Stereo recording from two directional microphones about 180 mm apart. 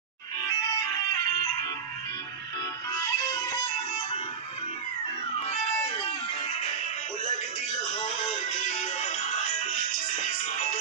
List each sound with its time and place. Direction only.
3.0 s music: 20° left (ahead or behind)
8.6 s music: 40° left (ahead or behind)